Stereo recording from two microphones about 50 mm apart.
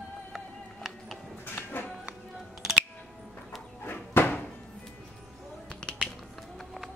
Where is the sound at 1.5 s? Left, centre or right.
Left.